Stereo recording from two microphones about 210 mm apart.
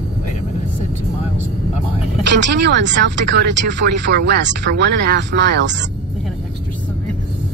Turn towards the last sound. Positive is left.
turn(degrees=-55)  # may be behind; listen again after turning